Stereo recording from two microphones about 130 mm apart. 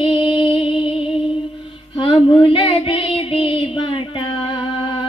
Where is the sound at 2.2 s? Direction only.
40° left (ahead or behind).